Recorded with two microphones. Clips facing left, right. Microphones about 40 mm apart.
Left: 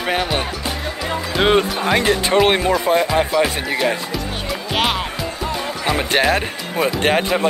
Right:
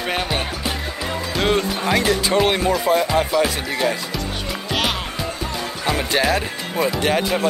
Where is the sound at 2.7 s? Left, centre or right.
Left.